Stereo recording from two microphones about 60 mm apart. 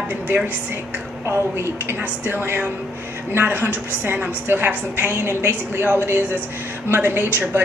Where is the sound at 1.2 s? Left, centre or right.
Right.